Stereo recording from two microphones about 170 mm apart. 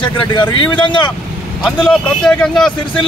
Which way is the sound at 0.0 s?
30° left (ahead or behind).